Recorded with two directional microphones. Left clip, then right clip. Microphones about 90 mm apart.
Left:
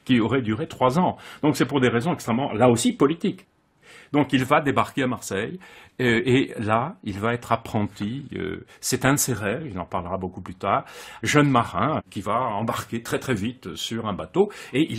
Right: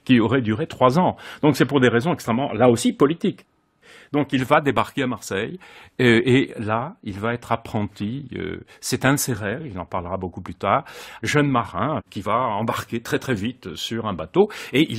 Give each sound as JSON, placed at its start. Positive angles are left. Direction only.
{"t": 0.0, "sound": "speech", "side_deg": -50}
{"t": 6.2, "sound": "speech", "side_deg": -35}
{"t": 11.2, "sound": "speech", "side_deg": -45}
{"t": 12.4, "sound": "speech", "side_deg": -75}
{"t": 14.5, "sound": "speech", "side_deg": -90}